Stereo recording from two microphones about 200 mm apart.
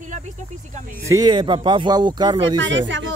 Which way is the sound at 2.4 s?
65° right (ahead or behind).